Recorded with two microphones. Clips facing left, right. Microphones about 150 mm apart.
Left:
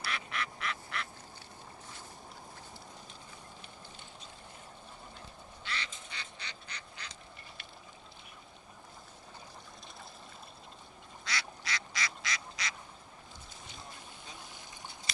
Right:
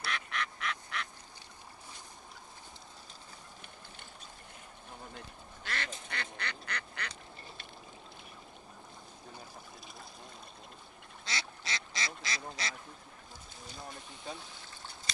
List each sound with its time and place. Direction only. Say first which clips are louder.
0.0 s duck: right 1 dB; 5° left (ahead or behind)
5.1 s duck: right 2 dB; 50° right (ahead or behind)
5.9 s duck: right 6 dB; 60° right (ahead or behind)
11.2 s duck: left 1 dB; 25° right (ahead or behind)